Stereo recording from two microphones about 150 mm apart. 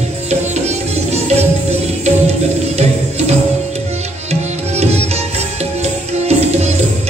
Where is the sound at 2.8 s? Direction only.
45° right (ahead or behind).